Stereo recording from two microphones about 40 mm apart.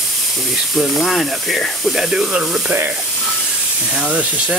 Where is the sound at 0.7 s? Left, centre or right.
Centre.